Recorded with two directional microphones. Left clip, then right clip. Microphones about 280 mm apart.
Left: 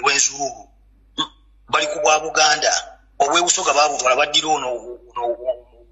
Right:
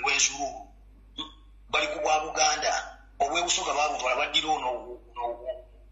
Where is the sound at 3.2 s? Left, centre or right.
Left.